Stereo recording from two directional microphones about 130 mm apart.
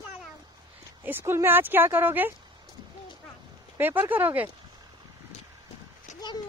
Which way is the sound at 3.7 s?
15° right (ahead or behind).